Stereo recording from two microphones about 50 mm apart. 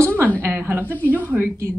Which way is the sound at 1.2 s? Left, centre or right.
Right.